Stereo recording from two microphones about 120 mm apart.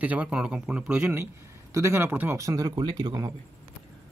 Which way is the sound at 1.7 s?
25° right (ahead or behind).